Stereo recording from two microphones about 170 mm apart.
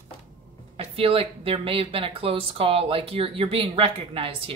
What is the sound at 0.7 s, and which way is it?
Speech, 35° right (ahead or behind).